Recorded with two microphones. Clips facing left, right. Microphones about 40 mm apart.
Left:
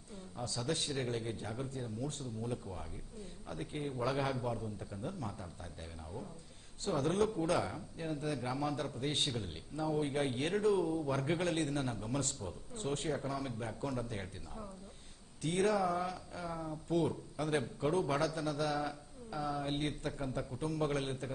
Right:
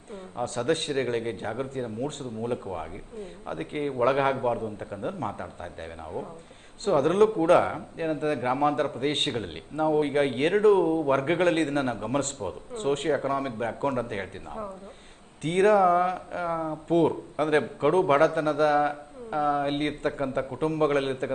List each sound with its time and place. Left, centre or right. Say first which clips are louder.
0.4 s a man's voice: right 11 dB; right
6.8 s a man's voice: right 12 dB; right